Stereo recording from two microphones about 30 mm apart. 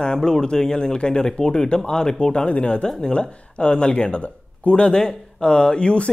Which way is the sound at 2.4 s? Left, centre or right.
Left.